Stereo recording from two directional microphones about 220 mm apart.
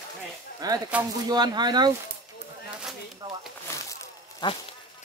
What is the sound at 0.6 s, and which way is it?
Speech, 15° right (ahead or behind).